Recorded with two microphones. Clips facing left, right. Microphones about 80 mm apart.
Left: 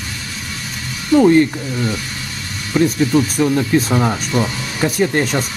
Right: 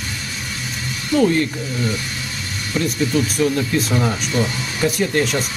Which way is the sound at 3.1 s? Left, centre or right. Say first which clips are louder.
Left 3 dB; left.